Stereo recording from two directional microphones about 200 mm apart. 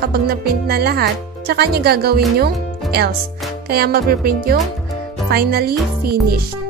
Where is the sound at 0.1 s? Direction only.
50° right (ahead or behind).